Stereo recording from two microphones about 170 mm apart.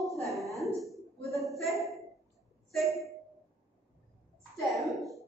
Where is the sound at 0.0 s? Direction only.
Centre (ahead or behind).